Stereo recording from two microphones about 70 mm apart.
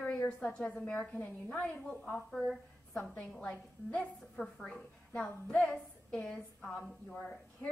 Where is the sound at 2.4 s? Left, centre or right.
Centre.